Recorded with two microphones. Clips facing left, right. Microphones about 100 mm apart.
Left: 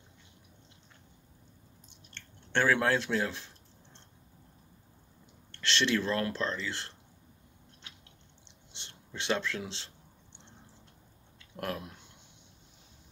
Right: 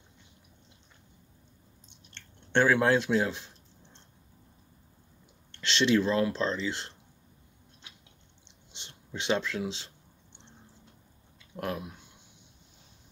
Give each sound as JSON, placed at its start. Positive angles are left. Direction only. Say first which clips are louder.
{"t": 1.9, "sound": "drip", "louder": "left 1 dB", "side_deg": -20}
{"t": 5.5, "sound": "speech", "louder": "right 4 dB", "side_deg": -15}
{"t": 8.7, "sound": "a sound", "louder": "right 3 dB", "side_deg": -15}
{"t": 9.6, "sound": "speech", "louder": "right 6 dB", "side_deg": -15}
{"t": 11.5, "sound": "speech", "louder": "right 2 dB", "side_deg": -10}